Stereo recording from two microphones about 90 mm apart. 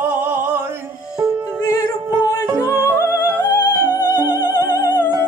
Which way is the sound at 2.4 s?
15° right (ahead or behind).